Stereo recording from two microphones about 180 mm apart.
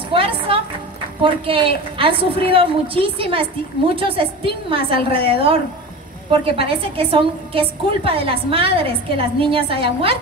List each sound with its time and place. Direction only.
0.1 s music: 30° right (ahead or behind)
1.2 s a woman's voice: 30° right (ahead or behind)